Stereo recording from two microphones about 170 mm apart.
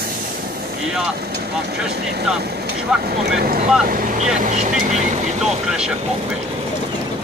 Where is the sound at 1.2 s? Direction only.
70° right (ahead or behind).